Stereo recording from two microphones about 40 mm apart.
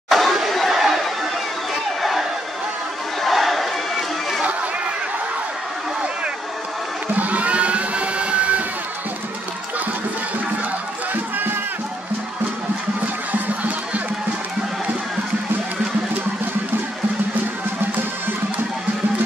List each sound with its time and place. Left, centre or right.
0.1 s chatter: centre
2.0 s a sound: centre
7.2 s music: right
13.3 s music: right